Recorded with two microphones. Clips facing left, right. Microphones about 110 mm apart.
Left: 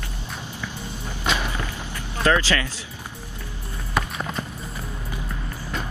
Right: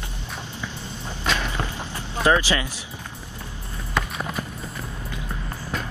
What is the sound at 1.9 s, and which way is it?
Vehicle, 20° right (ahead or behind).